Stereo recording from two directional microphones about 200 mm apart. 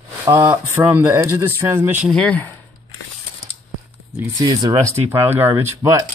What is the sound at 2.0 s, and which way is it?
Speech, 5° left (ahead or behind).